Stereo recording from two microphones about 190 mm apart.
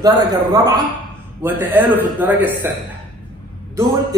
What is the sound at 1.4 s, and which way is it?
A man's voice, 10° right (ahead or behind).